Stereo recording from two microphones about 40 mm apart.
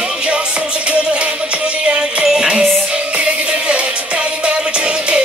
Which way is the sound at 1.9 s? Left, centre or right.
Right.